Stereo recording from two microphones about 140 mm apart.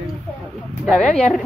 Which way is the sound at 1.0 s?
10° left (ahead or behind).